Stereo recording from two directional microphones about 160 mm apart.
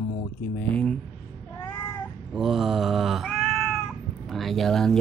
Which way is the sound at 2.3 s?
Centre (ahead or behind).